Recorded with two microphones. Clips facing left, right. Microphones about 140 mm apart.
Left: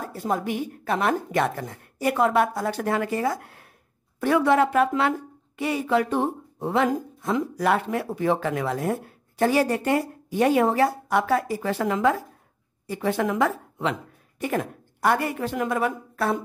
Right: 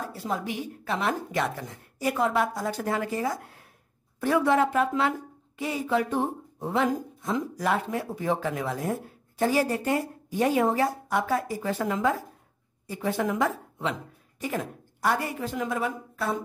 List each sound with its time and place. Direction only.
0.0 s a woman's voice: 50° left (ahead or behind)